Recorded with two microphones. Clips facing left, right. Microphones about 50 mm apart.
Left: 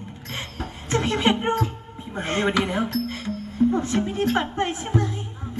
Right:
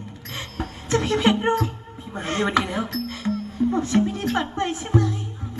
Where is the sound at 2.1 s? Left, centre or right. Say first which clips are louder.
Left 1 dB; left.